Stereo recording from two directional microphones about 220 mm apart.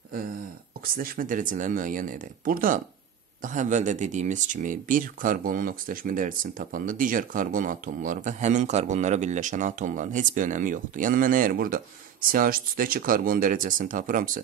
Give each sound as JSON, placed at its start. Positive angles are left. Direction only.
{"t": 0.9, "sound": "speech", "side_deg": -40}